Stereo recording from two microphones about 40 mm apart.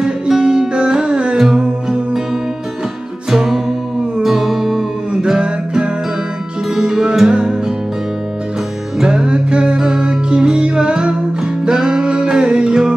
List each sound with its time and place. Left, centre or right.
0.0 s music: centre
3.3 s music: centre
5.1 s music: right
9.0 s music: centre